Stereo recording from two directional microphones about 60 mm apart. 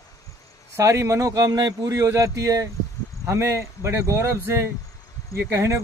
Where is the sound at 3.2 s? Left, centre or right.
Right.